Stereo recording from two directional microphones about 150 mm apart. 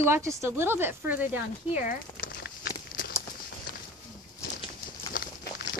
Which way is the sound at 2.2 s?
85° left.